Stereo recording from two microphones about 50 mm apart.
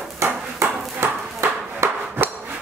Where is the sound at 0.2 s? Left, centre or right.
Right.